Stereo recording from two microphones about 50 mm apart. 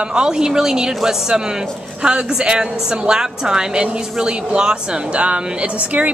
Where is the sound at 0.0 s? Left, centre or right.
Centre.